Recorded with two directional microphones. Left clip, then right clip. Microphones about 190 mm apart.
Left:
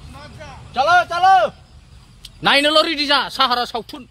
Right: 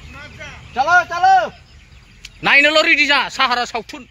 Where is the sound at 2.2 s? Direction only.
15° left (ahead or behind).